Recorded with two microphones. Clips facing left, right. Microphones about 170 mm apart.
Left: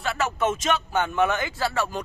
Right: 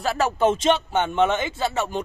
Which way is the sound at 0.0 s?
35° right (ahead or behind).